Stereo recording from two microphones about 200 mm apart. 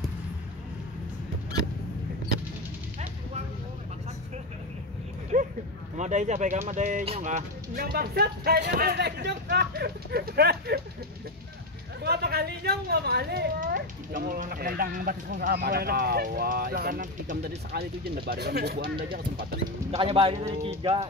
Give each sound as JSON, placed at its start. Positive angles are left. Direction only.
{"t": 5.3, "sound": "a sound", "side_deg": -40}
{"t": 5.9, "sound": "speech", "side_deg": -35}
{"t": 12.0, "sound": "speech", "side_deg": -55}
{"t": 18.8, "sound": "speech", "side_deg": -25}